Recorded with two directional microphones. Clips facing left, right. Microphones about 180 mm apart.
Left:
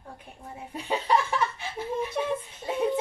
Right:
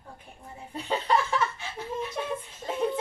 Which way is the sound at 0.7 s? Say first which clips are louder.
Left 1 dB; 15° left (ahead or behind).